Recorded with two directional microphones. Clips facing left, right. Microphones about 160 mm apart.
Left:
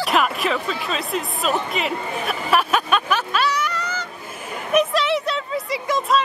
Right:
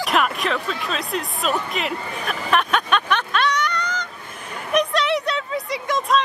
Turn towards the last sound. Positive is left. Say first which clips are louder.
# left 1 dB
turn(degrees=0)  # may be behind; listen again after turning